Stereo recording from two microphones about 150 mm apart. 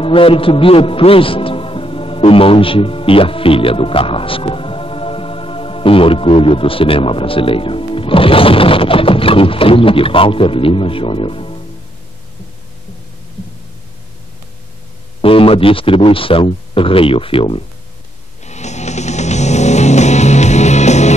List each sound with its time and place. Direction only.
0.0 s a man's voice: 35° left (ahead or behind)
15.2 s speech: 40° left (ahead or behind)
18.4 s music: 50° left (ahead or behind)